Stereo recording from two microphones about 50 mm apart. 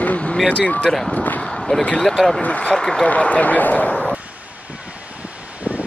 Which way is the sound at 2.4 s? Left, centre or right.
Left.